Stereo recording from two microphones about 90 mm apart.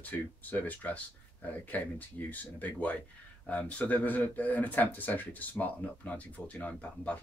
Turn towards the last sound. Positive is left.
turn(degrees=15)  # may be behind; listen again after turning